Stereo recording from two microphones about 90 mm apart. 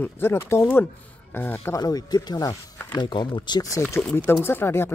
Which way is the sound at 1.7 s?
45° left (ahead or behind).